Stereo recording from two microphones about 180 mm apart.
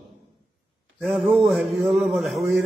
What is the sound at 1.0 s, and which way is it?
A man's voice, centre (ahead or behind).